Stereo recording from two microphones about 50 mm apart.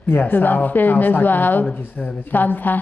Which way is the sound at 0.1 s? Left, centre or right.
Left.